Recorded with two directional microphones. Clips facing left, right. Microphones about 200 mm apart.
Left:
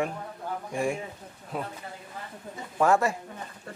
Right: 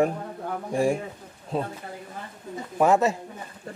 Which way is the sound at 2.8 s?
20° right (ahead or behind).